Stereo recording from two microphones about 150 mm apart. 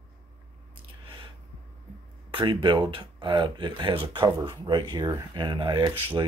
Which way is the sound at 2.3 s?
35° right (ahead or behind).